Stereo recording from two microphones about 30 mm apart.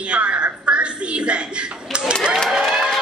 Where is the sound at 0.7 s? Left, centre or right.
Right.